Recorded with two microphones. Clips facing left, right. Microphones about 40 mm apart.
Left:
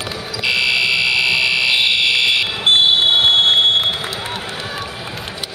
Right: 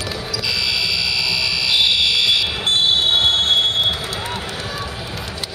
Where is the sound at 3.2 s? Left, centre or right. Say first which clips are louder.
Left 4 dB; left.